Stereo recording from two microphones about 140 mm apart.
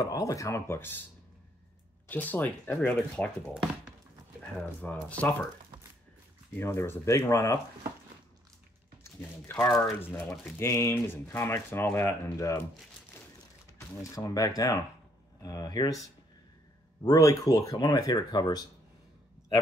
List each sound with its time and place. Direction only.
0.0 s speech: 25° left (ahead or behind)
2.0 s speech: 10° left (ahead or behind)
4.4 s speech: 5° left (ahead or behind)
6.5 s speech: 15° left (ahead or behind)
9.0 s speech: 15° left (ahead or behind)
13.7 s speech: 25° left (ahead or behind)
17.0 s speech: 25° left (ahead or behind)